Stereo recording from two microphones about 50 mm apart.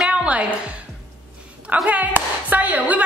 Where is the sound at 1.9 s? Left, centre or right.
Right.